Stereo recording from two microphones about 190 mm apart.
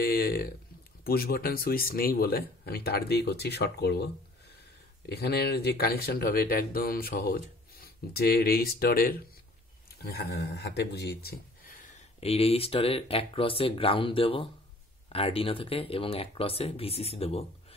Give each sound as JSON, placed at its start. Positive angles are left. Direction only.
{"t": 0.0, "sound": "speech", "side_deg": 50}
{"t": 12.2, "sound": "speech", "side_deg": 30}